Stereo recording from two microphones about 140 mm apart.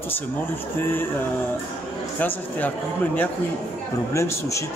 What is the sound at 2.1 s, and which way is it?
Speech, 10° left (ahead or behind).